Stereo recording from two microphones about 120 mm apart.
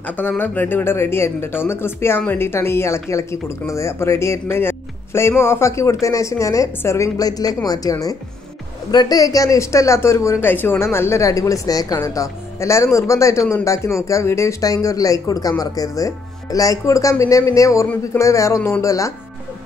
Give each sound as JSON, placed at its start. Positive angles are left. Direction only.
{"t": 0.0, "sound": "speech", "side_deg": 15}